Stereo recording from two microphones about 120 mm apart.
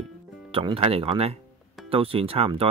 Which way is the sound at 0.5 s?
50° right (ahead or behind).